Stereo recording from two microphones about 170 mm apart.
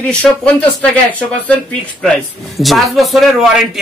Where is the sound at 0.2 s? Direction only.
10° left (ahead or behind).